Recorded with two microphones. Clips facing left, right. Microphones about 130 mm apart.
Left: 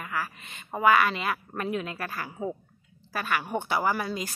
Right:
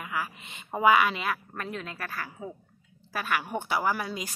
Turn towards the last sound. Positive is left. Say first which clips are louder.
# left 2 dB
turn(degrees=-5)  # may be behind; listen again after turning